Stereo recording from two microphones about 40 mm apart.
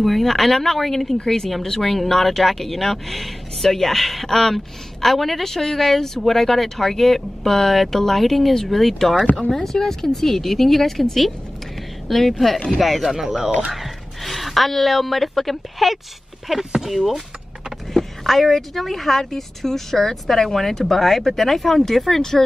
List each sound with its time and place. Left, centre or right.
0.0 s a woman's voice: centre
16.5 s a woman's voice: centre